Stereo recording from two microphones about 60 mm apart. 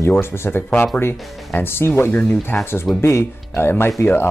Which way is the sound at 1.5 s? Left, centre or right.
Left.